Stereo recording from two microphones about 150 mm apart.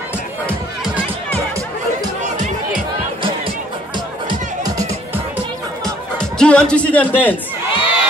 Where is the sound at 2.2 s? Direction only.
55° right (ahead or behind).